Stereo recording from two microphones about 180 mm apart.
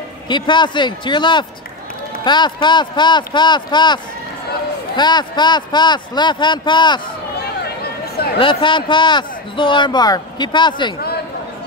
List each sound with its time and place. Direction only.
0.3 s speech: 25° left (ahead or behind)
7.3 s a sound: 60° left (ahead or behind)
8.4 s speech: 30° left (ahead or behind)